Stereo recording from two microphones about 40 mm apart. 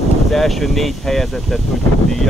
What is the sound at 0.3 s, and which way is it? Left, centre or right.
Speech, centre.